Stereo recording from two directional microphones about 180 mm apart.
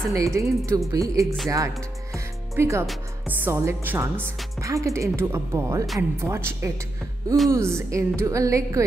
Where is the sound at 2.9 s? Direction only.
10° right (ahead or behind).